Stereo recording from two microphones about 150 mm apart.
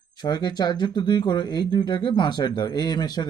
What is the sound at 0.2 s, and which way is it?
Speech, 30° left (ahead or behind).